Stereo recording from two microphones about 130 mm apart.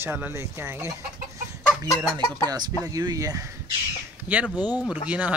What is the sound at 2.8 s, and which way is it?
Speech, 30° right (ahead or behind).